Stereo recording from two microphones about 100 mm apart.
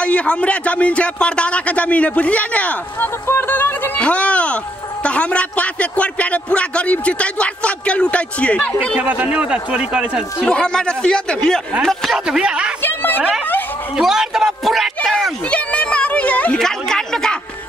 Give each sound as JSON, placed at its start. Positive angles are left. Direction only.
{"t": 0.0, "sound": "speech", "side_deg": 10}
{"t": 9.0, "sound": "speech", "side_deg": -15}
{"t": 10.4, "sound": "speech", "side_deg": 5}
{"t": 12.8, "sound": "a sound", "side_deg": 20}
{"t": 13.9, "sound": "speech", "side_deg": -5}
{"t": 15.5, "sound": "a woman's voice", "side_deg": 10}